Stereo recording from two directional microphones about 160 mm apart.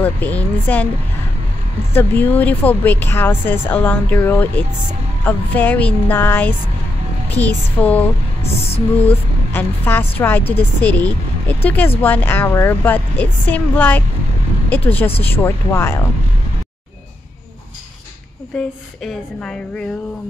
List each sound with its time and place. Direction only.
0.0 s speech: 10° left (ahead or behind)
2.0 s speech: 10° left (ahead or behind)
8.6 s music: 40° left (ahead or behind)
9.5 s speech: 15° left (ahead or behind)
15.2 s speech: 15° left (ahead or behind)
18.5 s a woman's voice: 5° left (ahead or behind)